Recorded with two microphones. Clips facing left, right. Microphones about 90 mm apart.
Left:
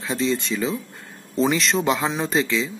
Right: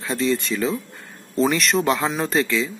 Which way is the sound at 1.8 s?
20° left (ahead or behind).